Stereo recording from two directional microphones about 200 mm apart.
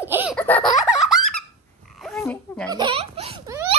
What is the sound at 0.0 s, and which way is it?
Baby laughter, 10° right (ahead or behind).